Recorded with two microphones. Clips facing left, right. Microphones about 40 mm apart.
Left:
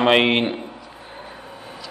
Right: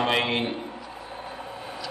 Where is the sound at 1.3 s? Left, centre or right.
Centre.